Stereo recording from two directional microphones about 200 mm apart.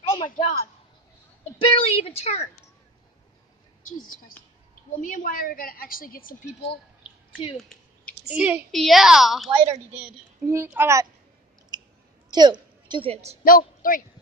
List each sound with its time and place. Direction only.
0.1 s a man's voice: 30° left (ahead or behind)
1.6 s a woman's voice: 30° left (ahead or behind)
5.0 s a woman's voice: 45° left (ahead or behind)
7.5 s a sound: 5° left (ahead or behind)
8.3 s a woman's voice: 5° right (ahead or behind)
9.7 s a woman's voice: 10° right (ahead or behind)
12.3 s a woman's voice: 20° right (ahead or behind)
13.4 s a woman's voice: 45° left (ahead or behind)